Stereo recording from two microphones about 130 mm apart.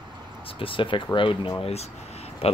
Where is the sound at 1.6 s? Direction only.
55° left (ahead or behind).